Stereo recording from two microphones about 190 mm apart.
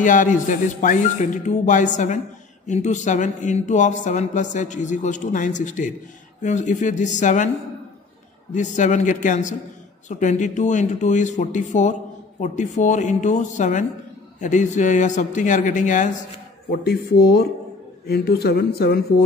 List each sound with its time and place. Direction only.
0.0 s speech: 40° left (ahead or behind)
8.5 s speech: 40° left (ahead or behind)
16.7 s speech: 55° left (ahead or behind)